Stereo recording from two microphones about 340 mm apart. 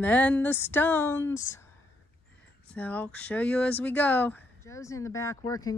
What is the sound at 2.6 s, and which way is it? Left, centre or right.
Speech, centre.